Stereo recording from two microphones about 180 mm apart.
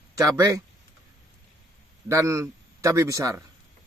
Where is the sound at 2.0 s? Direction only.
15° right (ahead or behind).